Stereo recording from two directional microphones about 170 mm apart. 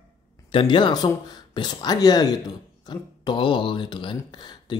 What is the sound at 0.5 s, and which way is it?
Speech, 30° left (ahead or behind).